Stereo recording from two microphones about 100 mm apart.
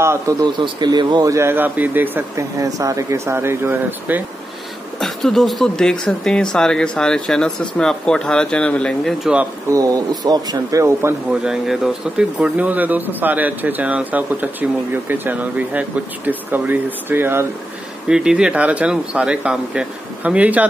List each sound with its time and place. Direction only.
0.0 s speech: 25° right (ahead or behind)
0.4 s a man's voice: 45° right (ahead or behind)
1.3 s speech: 25° right (ahead or behind)
2.3 s speech: 35° right (ahead or behind)
5.0 s speech: 5° left (ahead or behind)
9.2 s speech: 10° right (ahead or behind)
9.7 s speech: 35° right (ahead or behind)
10.8 s speech: 25° right (ahead or behind)
11.4 s speech: 5° right (ahead or behind); by 17.5 s 20° right (ahead or behind)
18.0 s speech: 10° right (ahead or behind)